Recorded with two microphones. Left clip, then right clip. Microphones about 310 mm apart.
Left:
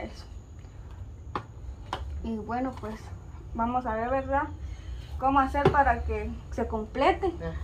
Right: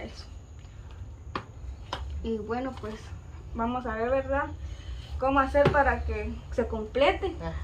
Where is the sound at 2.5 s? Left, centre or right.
Centre.